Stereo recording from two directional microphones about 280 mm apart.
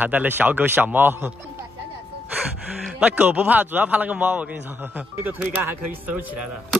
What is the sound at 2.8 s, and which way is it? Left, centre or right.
A man's voice, centre.